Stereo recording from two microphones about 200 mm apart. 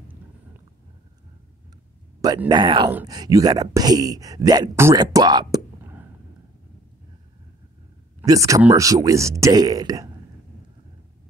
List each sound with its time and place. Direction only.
2.2 s speech: 20° right (ahead or behind)
8.2 s speech: 15° right (ahead or behind)